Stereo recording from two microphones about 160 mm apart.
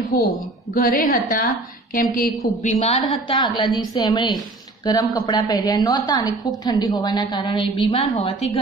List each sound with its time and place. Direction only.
0.1 s a woman's voice: 70° left (ahead or behind)
2.6 s a woman's voice: 45° left (ahead or behind)
3.3 s a woman's voice: 30° left (ahead or behind)